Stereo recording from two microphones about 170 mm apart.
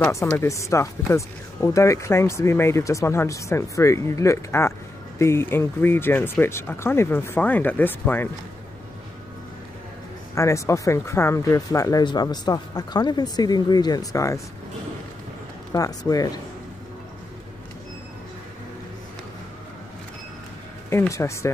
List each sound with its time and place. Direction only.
0.3 s speech: 15° left (ahead or behind)
10.3 s speech: 15° left (ahead or behind)
15.7 s speech: 20° left (ahead or behind)
20.9 s speech: 15° left (ahead or behind)